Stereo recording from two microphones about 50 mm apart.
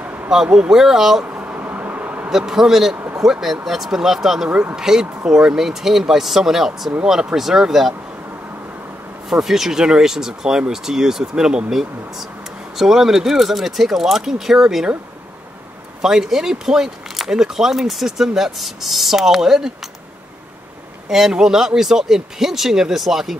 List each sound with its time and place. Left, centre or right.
0.0 s a sound: right
0.3 s speech: centre
1.2 s bee: right
2.2 s speech: centre
9.3 s speech: centre
16.0 s speech: centre
21.1 s speech: centre